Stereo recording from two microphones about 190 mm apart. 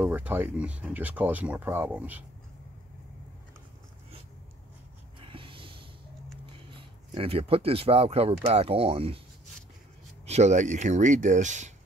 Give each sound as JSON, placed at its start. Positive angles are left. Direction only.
{"t": 0.0, "sound": "speech", "side_deg": -10}
{"t": 5.2, "sound": "snort", "side_deg": -25}
{"t": 6.4, "sound": "speech", "side_deg": -30}
{"t": 10.2, "sound": "speech", "side_deg": -35}